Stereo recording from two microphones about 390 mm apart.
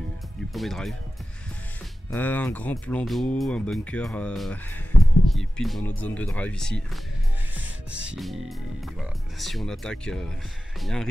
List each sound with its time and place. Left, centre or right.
0.5 s speech: centre
2.0 s speech: centre
4.9 s music: left
5.3 s speech: centre
7.9 s speech: centre